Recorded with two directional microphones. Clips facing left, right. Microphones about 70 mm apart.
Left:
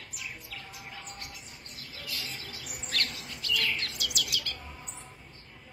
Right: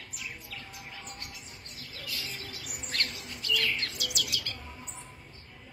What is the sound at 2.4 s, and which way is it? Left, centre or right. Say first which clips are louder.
Chirp: even; right.